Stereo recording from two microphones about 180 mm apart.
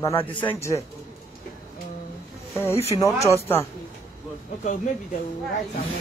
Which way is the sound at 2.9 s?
15° left (ahead or behind).